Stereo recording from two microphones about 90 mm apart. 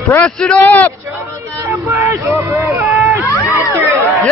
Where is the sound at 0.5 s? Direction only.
20° left (ahead or behind).